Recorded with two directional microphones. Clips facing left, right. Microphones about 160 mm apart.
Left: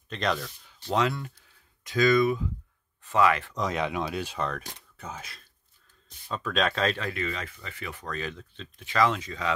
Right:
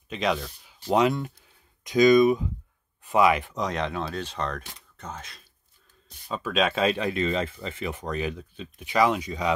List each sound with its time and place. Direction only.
0.1 s speech: 5° right (ahead or behind)
3.5 s speech: 5° left (ahead or behind)
6.3 s speech: 5° right (ahead or behind)
7.2 s speech: 25° right (ahead or behind)